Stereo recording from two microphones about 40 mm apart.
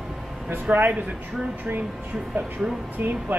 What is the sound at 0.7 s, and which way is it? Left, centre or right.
Speech, right.